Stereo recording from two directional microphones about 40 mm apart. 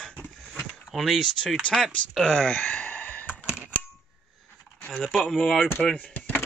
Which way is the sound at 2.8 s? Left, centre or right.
Left.